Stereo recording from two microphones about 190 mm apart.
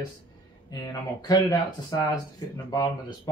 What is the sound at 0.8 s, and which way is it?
Speech, 20° left (ahead or behind).